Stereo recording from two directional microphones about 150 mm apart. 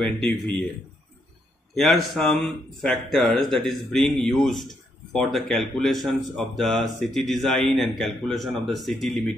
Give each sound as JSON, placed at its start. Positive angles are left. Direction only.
{"t": 0.3, "sound": "speech", "side_deg": 10}
{"t": 1.8, "sound": "speech", "side_deg": 0}